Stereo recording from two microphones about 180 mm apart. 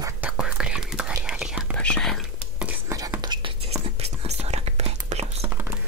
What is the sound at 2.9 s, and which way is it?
Whispering, 20° right (ahead or behind).